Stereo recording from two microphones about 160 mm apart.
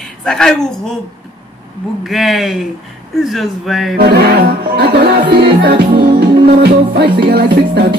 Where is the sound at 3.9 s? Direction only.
90° right.